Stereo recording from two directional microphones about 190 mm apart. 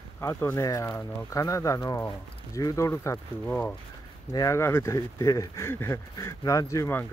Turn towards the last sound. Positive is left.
turn(degrees=15)  # may be behind; listen again after turning